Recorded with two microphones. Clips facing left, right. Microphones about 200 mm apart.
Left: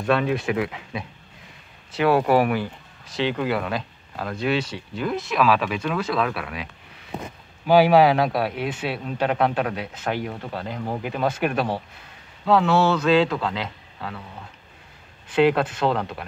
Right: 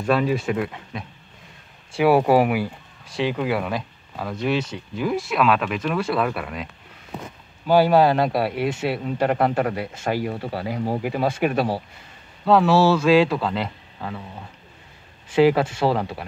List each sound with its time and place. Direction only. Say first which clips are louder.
0.0 s speech: right 1 dB; 5° right (ahead or behind)
2.0 s speech: right 2 dB; 15° right (ahead or behind)
15.2 s speech: right 2 dB; 5° right (ahead or behind)